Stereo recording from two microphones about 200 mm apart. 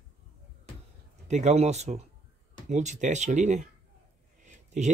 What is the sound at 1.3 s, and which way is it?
Speech, 35° right (ahead or behind).